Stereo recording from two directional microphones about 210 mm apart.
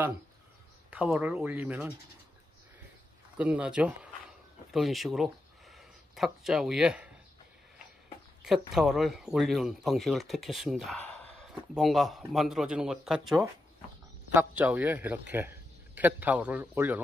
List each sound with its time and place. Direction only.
0.8 s a man's voice: 5° right (ahead or behind)
3.3 s speech: 5° right (ahead or behind)
8.4 s a man's voice: centre (ahead or behind)